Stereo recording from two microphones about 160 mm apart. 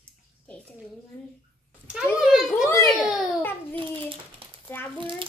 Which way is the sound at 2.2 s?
5° right (ahead or behind).